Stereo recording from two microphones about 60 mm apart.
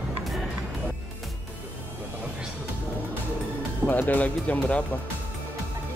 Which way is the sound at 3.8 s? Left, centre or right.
Left.